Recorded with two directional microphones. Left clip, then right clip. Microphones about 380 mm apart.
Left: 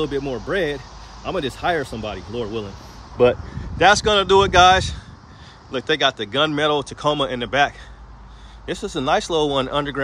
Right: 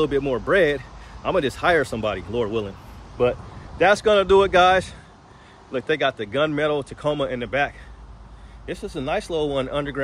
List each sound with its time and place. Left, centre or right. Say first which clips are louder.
0.0 s speech: right 2 dB; centre
3.2 s speech: left 5 dB; left
3.7 s speech: left 2 dB; centre